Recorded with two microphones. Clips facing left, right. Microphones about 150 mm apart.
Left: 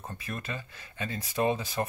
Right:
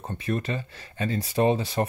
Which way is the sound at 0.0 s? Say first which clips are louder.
Right 10 dB; 30° right (ahead or behind).